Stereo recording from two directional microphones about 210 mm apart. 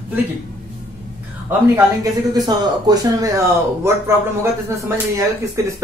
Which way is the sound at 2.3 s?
20° right (ahead or behind).